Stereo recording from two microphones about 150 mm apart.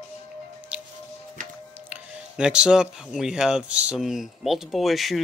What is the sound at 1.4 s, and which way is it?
Music, 60° right (ahead or behind).